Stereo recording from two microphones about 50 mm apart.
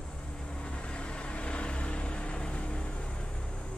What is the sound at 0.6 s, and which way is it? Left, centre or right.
Vehicle, left.